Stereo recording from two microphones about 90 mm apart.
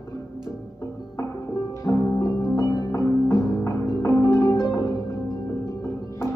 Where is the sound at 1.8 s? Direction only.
35° left (ahead or behind).